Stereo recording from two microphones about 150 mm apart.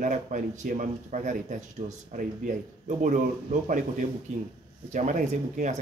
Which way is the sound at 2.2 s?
55° right (ahead or behind).